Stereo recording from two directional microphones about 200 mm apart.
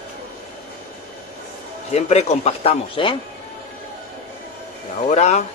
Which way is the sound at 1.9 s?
35° left (ahead or behind).